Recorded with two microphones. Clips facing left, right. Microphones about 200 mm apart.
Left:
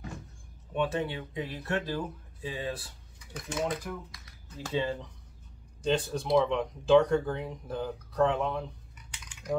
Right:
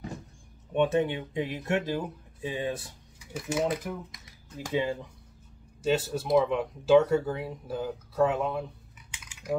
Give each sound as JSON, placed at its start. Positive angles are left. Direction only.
{"t": 0.7, "sound": "speech", "side_deg": -20}
{"t": 3.2, "sound": "speech", "side_deg": -10}